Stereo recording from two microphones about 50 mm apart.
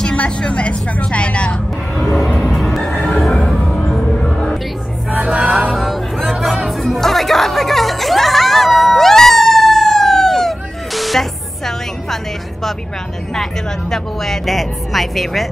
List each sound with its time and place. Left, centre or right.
0.0 s a woman's voice: centre
2.5 s music: centre
5.1 s music: right
5.7 s music: centre
13.3 s speech: centre
14.4 s speech: centre